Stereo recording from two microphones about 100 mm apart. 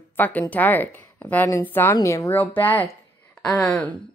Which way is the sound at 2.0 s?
30° left (ahead or behind).